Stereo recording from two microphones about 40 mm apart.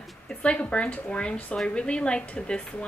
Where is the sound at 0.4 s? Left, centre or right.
Left.